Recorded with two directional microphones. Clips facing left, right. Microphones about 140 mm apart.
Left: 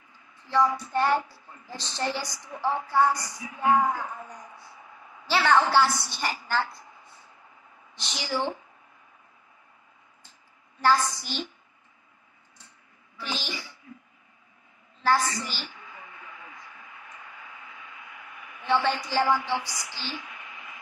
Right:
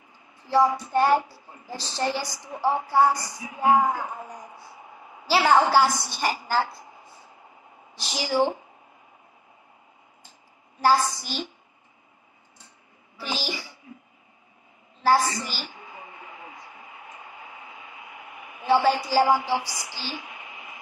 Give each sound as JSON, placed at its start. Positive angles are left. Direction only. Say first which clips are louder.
{"t": 0.4, "sound": "a woman's voice", "louder": "right 3 dB", "side_deg": -35}
{"t": 4.7, "sound": "a sound", "louder": "right 3 dB", "side_deg": -25}
{"t": 5.8, "sound": "a woman's voice", "louder": "right 2 dB", "side_deg": -15}
{"t": 6.4, "sound": "a woman's voice", "louder": "right 2 dB", "side_deg": -35}
{"t": 7.9, "sound": "a woman's voice", "louder": "right 5 dB", "side_deg": -35}
{"t": 10.8, "sound": "a woman's voice", "louder": "right 2 dB", "side_deg": -35}
{"t": 13.2, "sound": "a woman's voice", "louder": "right 3 dB", "side_deg": -35}
{"t": 13.9, "sound": "cough", "louder": "right 1 dB", "side_deg": -20}
{"t": 15.0, "sound": "a woman's voice", "louder": "right 3 dB", "side_deg": -35}
{"t": 15.6, "sound": "a sound", "louder": "right 3 dB", "side_deg": -25}
{"t": 18.6, "sound": "a woman's voice", "louder": "right 5 dB", "side_deg": -35}
{"t": 20.2, "sound": "a sound", "louder": "right 2 dB", "side_deg": -25}